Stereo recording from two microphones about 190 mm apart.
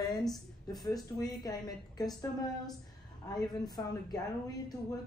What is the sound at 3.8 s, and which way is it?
Speech, 15° left (ahead or behind).